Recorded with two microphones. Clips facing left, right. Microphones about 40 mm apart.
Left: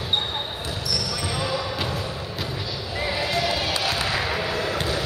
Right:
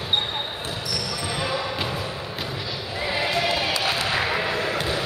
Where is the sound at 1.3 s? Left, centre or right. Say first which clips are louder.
Even; centre.